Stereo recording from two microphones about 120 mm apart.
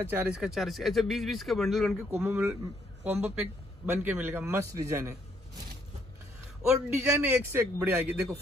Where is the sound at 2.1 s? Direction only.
15° right (ahead or behind).